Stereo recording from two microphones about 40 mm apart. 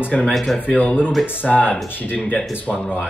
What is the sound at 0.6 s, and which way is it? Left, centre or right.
Cough, left.